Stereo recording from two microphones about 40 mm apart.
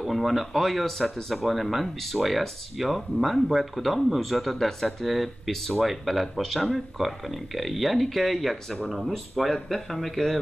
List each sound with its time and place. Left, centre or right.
0.0 s speech: centre